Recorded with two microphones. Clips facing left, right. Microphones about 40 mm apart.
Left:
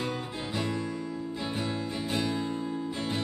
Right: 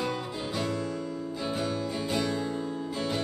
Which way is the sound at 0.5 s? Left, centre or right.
Centre.